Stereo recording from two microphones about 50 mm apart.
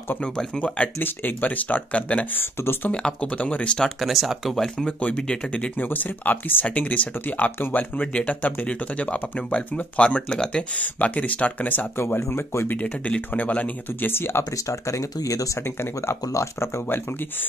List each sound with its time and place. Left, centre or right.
0.9 s speech: left
2.6 s speech: left
2.9 s speech: centre
4.0 s speech: centre
5.8 s speech: left
8.1 s speech: left
10.3 s speech: centre
10.8 s speech: left
12.2 s speech: left
12.8 s speech: left
13.3 s speech: left
14.1 s speech: left
14.7 s speech: left
15.8 s speech: left